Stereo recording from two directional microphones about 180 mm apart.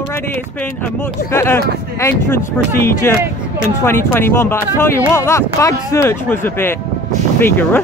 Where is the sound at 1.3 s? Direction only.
15° left (ahead or behind).